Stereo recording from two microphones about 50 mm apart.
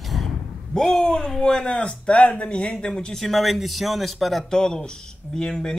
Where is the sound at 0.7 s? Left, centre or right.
Centre.